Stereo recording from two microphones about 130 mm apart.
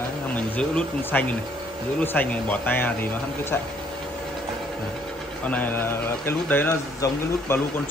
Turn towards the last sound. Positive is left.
turn(degrees=20)  # may be behind; listen again after turning